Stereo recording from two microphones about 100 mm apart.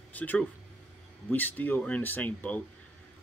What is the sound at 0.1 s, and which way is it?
Speech, 15° left (ahead or behind).